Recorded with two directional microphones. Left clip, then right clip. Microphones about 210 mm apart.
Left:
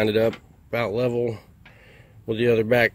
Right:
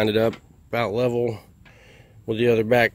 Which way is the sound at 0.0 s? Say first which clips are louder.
Even; 10° right (ahead or behind).